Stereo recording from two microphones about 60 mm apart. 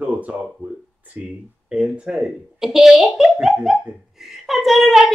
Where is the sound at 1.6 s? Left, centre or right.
Centre.